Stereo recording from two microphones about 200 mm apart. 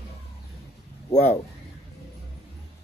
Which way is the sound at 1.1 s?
35° left (ahead or behind).